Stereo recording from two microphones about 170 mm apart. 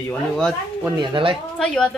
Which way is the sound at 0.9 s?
30° right (ahead or behind).